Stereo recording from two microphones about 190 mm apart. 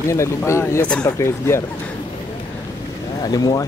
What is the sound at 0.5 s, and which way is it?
Speech, 15° left (ahead or behind).